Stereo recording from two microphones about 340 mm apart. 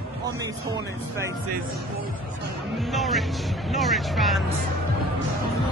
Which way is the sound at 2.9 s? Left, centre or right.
Centre.